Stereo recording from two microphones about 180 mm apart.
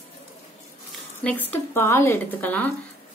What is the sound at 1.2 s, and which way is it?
A woman's voice, 10° left (ahead or behind).